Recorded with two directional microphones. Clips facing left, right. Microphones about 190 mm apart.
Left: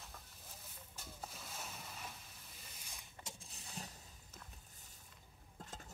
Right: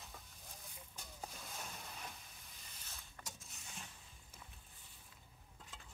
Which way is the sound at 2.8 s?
15° left (ahead or behind).